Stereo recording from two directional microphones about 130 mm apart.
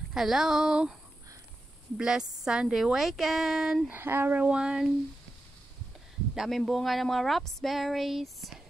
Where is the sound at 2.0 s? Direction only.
5° right (ahead or behind).